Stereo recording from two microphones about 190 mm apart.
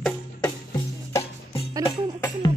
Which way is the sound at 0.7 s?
25° left (ahead or behind).